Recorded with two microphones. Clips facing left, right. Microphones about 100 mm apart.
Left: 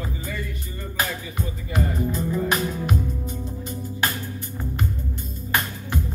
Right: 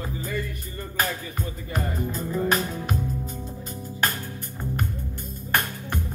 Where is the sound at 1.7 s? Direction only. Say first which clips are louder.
Left 4 dB; 40° right (ahead or behind).